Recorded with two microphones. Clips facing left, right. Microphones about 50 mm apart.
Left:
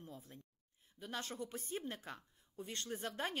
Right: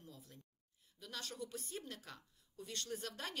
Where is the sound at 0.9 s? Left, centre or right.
Left.